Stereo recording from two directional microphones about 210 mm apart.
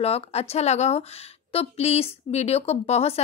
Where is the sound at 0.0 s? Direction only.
30° left (ahead or behind).